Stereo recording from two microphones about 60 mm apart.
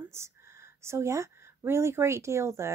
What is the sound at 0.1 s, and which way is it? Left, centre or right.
Speech, right.